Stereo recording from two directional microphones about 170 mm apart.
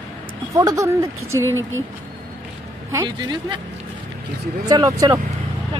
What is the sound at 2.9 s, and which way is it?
Speech, 25° right (ahead or behind).